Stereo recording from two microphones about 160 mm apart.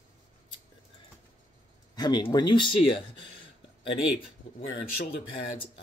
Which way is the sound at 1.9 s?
25° left (ahead or behind).